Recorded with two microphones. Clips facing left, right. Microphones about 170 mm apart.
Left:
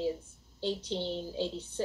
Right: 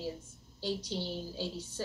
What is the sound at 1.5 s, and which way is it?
Speech, 60° left (ahead or behind).